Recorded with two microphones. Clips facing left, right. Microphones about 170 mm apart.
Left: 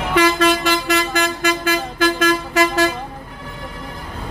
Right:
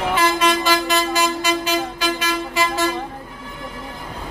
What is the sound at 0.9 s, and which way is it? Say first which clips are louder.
Vehicle: left 1 dB; 60° left (ahead or behind).